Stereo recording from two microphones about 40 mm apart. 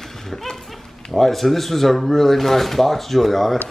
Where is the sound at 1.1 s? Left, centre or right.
Centre.